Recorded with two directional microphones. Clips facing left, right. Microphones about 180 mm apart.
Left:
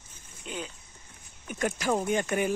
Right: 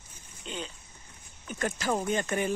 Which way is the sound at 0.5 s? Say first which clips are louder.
Left 1 dB; 10° left (ahead or behind).